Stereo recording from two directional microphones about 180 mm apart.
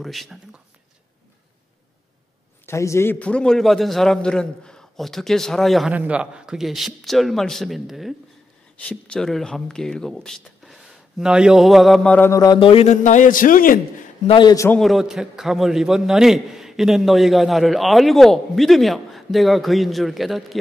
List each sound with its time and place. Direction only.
0.0 s speech: centre (ahead or behind)
2.6 s a man's voice: 15° left (ahead or behind); by 13.7 s 50° left (ahead or behind)
14.2 s a man's voice: 25° left (ahead or behind)
14.7 s a man's voice: centre (ahead or behind)